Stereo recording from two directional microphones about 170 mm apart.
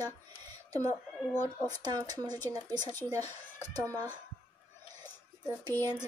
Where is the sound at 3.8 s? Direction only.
10° left (ahead or behind).